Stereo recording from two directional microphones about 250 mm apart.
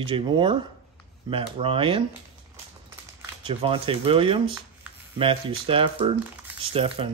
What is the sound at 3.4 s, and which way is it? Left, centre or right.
Speech, right.